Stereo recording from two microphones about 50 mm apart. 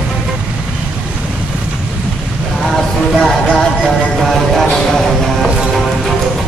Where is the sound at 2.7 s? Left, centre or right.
Centre.